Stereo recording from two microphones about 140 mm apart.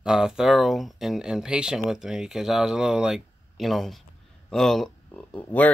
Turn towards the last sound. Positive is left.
turn(degrees=10)  # may be behind; listen again after turning